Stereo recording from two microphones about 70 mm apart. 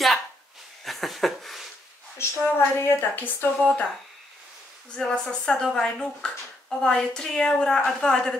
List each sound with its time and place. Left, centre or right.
0.8 s a sound: centre
2.1 s a woman's voice: left
3.5 s speech: centre
4.9 s speech: centre